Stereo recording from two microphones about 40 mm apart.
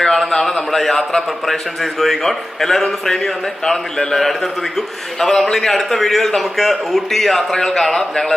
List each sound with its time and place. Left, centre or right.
0.0 s a man's voice: centre